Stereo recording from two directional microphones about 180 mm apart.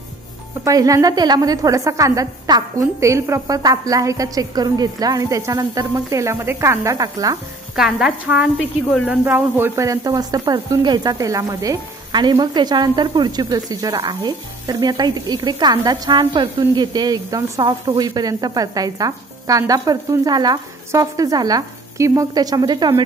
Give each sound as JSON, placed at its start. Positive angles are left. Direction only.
{"t": 0.7, "sound": "a woman's voice", "side_deg": -20}
{"t": 7.7, "sound": "a woman's voice", "side_deg": -5}